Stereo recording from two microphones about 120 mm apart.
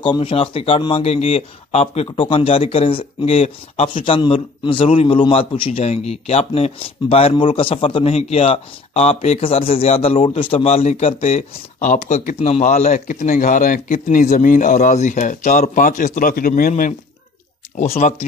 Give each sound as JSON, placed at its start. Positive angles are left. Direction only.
{"t": 0.0, "sound": "speech", "side_deg": 50}
{"t": 12.4, "sound": "speech", "side_deg": 60}